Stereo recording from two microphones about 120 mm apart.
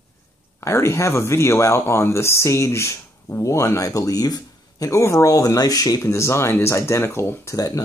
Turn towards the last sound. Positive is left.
turn(degrees=30)  # may be behind; listen again after turning